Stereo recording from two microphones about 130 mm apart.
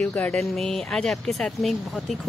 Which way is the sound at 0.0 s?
10° left (ahead or behind).